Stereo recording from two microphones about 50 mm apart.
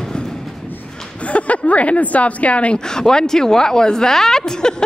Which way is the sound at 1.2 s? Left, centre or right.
Left.